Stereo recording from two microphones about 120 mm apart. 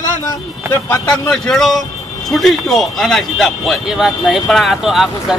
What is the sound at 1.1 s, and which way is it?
Speech, 5° left (ahead or behind).